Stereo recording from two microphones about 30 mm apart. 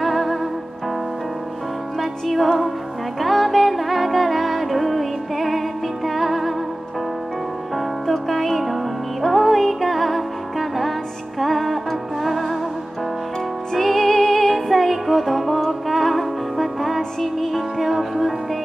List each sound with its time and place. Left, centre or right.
0.0 s music: centre
2.0 s music: centre
7.7 s music: centre
13.7 s music: centre